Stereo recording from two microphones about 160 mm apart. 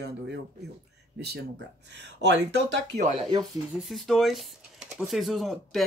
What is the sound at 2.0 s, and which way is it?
Speech, 90° right.